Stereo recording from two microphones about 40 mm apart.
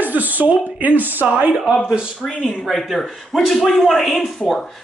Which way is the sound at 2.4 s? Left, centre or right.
Centre.